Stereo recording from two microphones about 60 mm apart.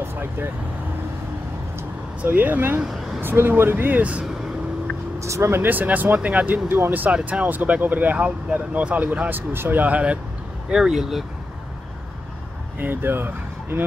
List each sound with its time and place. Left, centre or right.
0.1 s vehicle: right
2.2 s speech: right
5.2 s speech: right
5.6 s speech: right
6.7 s speech: right
9.3 s speech: right
10.7 s speech: centre
12.7 s speech: right